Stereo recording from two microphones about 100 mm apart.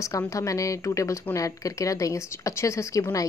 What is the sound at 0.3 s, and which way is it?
Speech, 35° left (ahead or behind).